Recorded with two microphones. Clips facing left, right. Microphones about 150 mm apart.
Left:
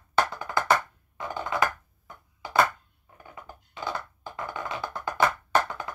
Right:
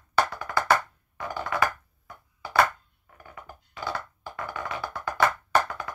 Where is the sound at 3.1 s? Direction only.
20° left (ahead or behind).